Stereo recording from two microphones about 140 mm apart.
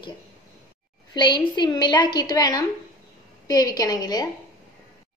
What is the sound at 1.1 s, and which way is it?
A woman's voice, 35° left (ahead or behind).